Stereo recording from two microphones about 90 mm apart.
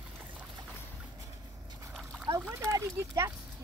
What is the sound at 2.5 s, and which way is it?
Clip-clop, 30° right (ahead or behind).